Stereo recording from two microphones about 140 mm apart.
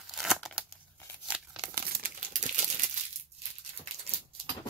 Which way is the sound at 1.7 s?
90° right.